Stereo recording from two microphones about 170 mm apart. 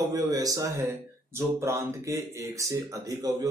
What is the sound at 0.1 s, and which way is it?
A man's voice, 20° right (ahead or behind).